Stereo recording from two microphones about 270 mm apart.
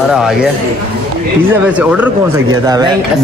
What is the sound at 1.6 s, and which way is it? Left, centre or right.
Speech, centre.